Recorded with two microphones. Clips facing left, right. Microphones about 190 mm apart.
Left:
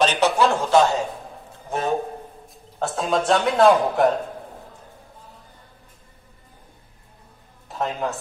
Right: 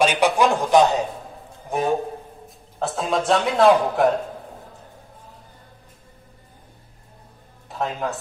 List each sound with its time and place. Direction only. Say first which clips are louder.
0.0 s a man's voice: right 1 dB; 10° right (ahead or behind)
2.8 s a man's voice: left 1 dB; centre (ahead or behind)
7.7 s a man's voice: even; centre (ahead or behind)